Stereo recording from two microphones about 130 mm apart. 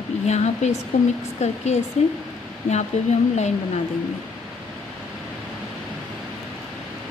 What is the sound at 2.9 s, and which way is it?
Speech, 60° left (ahead or behind).